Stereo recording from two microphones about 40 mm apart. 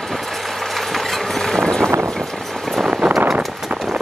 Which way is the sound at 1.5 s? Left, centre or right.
Centre.